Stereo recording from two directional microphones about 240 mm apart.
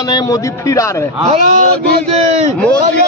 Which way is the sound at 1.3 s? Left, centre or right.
Right.